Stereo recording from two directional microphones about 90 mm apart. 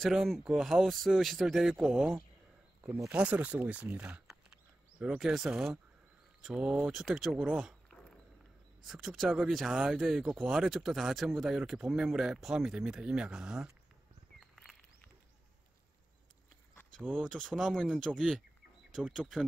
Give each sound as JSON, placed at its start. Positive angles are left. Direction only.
{"t": 0.0, "sound": "speech", "side_deg": 0}
{"t": 5.1, "sound": "speech", "side_deg": -5}
{"t": 8.8, "sound": "speech", "side_deg": 0}
{"t": 14.5, "sound": "a sound", "side_deg": 0}
{"t": 17.1, "sound": "speech", "side_deg": 5}